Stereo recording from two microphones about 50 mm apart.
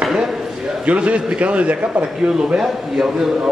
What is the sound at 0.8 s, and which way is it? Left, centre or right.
A man's voice, right.